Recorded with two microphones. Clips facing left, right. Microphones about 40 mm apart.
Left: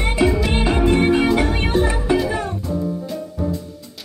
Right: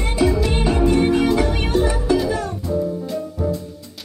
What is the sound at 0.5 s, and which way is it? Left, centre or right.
Music, left.